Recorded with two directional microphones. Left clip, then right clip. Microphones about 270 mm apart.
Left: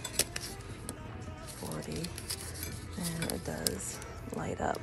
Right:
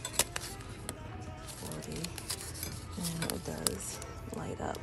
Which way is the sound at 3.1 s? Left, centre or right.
Centre.